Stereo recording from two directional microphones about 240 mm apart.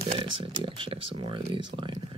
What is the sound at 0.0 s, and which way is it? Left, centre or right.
Speech, right.